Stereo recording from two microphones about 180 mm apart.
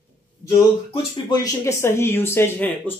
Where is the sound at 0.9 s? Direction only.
20° left (ahead or behind).